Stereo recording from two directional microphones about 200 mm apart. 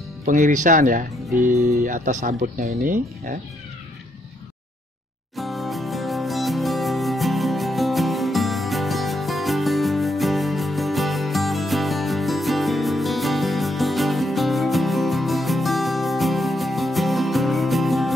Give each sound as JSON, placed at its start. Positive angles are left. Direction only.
{"t": 0.2, "sound": "speech", "side_deg": -40}
{"t": 5.3, "sound": "music", "side_deg": 0}